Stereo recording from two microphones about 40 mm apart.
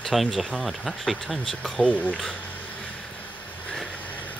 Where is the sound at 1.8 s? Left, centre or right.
Left.